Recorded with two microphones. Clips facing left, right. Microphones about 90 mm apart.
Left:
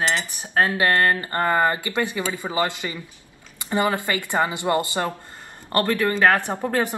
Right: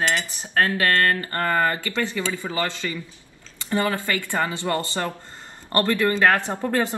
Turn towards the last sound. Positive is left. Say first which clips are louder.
# even
turn(degrees=15)  # may be behind; listen again after turning